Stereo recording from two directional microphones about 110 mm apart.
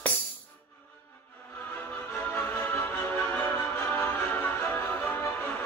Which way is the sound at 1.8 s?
15° left (ahead or behind).